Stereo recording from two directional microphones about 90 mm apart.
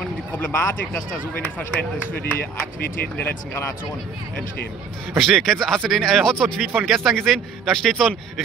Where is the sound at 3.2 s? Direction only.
25° left (ahead or behind).